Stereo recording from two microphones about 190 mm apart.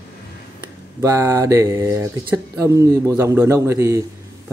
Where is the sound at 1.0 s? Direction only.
15° right (ahead or behind).